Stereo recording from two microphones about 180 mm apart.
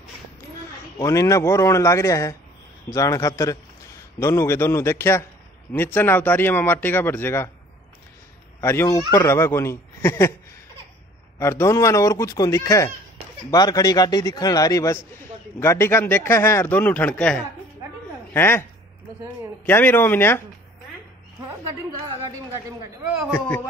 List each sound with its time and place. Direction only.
0.9 s speech: 15° left (ahead or behind)
8.5 s speech: 15° left (ahead or behind)
11.3 s speech: 15° left (ahead or behind)
23.3 s speech: 10° left (ahead or behind)